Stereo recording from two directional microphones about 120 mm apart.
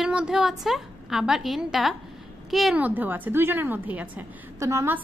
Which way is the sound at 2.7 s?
15° right (ahead or behind).